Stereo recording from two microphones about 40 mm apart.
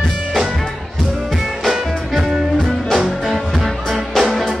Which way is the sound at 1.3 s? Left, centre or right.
Centre.